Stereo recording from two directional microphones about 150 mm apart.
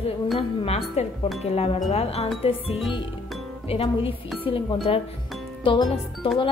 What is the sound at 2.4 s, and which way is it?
Speech, 40° left (ahead or behind).